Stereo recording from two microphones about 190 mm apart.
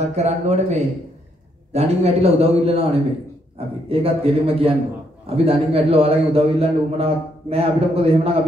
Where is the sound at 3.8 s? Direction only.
30° right (ahead or behind).